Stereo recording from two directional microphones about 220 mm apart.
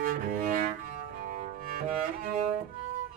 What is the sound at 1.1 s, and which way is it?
Music, 40° right (ahead or behind).